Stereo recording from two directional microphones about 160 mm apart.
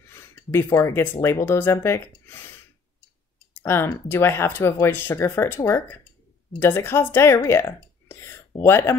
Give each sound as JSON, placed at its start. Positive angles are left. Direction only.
{"t": 0.1, "sound": "speech", "side_deg": 15}
{"t": 3.6, "sound": "speech", "side_deg": 15}
{"t": 8.1, "sound": "a sound", "side_deg": 15}